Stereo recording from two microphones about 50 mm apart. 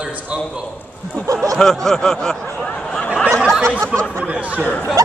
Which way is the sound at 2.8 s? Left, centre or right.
Centre.